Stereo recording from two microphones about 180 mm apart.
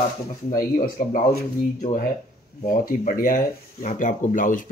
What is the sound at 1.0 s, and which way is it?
Speech, 50° left (ahead or behind).